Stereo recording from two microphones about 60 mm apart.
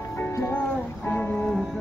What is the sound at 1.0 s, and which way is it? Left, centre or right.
Music, left.